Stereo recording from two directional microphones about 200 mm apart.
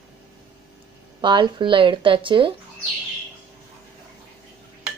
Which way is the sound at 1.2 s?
25° right (ahead or behind).